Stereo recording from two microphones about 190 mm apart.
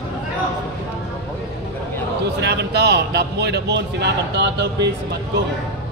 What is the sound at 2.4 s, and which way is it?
A man's voice, 60° right (ahead or behind).